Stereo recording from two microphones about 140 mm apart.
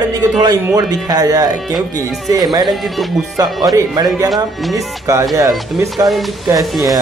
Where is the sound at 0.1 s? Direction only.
30° right (ahead or behind).